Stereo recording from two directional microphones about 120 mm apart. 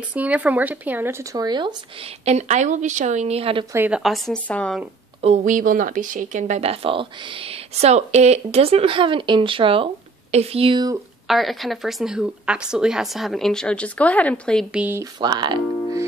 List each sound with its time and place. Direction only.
0.1 s speech: 10° right (ahead or behind)
1.3 s speech: 35° right (ahead or behind)
2.2 s a woman's voice: 75° right (ahead or behind); by 3.6 s 55° right (ahead or behind)
3.7 s speech: 15° right (ahead or behind)
4.0 s a woman's voice: centre (ahead or behind)
5.2 s speech: 80° right; by 9.8 s 45° right (ahead or behind)
10.3 s speech: 55° right (ahead or behind)
11.2 s a woman's voice: centre (ahead or behind)
14.7 s speech: 10° right (ahead or behind)
15.1 s speech: 40° right (ahead or behind)